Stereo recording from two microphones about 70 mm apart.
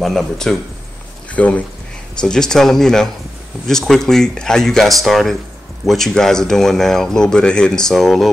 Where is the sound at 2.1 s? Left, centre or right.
Centre.